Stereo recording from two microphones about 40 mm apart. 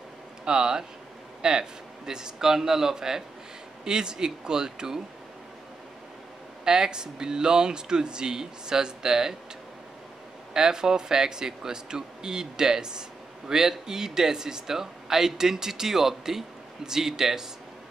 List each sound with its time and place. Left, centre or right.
0.5 s speech: centre
6.6 s speech: centre
10.5 s speech: centre